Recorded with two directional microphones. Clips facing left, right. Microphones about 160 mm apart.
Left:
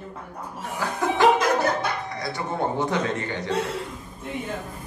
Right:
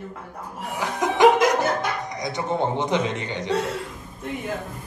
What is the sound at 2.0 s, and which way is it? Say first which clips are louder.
Speech: right 3 dB; 15° right (ahead or behind).